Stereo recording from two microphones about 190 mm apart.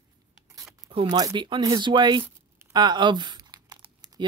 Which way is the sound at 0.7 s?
25° right (ahead or behind).